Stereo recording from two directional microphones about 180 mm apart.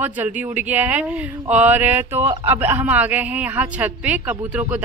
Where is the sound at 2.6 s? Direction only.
10° right (ahead or behind).